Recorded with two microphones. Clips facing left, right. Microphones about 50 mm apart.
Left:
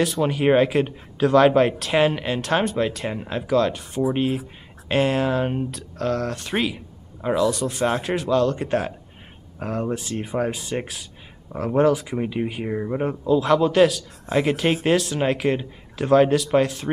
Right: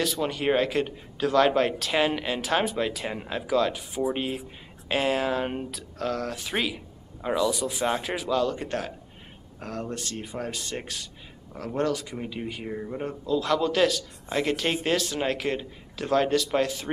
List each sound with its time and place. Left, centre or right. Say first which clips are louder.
0.0 s a man's voice: left 6 dB; centre; by 13.1 s left
13.2 s speech: left 6 dB; centre